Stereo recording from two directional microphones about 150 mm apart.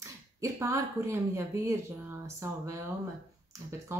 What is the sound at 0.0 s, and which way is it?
Speech, 20° right (ahead or behind).